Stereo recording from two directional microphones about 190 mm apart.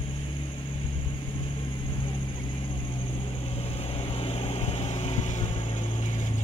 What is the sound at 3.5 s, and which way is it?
Vehicle, 30° left (ahead or behind).